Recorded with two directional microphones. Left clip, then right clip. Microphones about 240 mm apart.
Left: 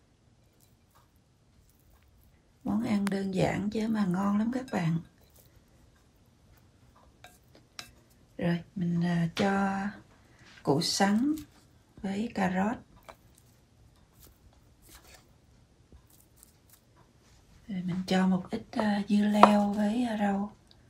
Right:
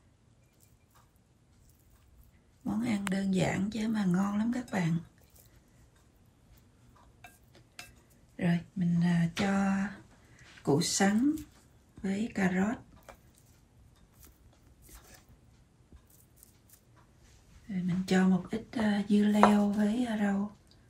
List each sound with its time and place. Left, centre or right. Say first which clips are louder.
2.6 s speech: left 2 dB; left
8.4 s speech: left 1 dB; left
17.7 s speech: even; left